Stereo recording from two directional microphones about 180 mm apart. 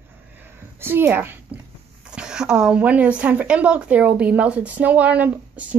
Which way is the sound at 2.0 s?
5° right (ahead or behind).